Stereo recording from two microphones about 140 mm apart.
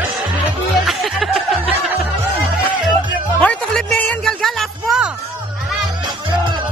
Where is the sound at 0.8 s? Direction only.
Centre (ahead or behind).